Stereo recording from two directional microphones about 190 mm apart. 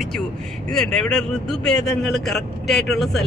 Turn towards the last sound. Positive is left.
turn(degrees=0)  # may be behind; listen again after turning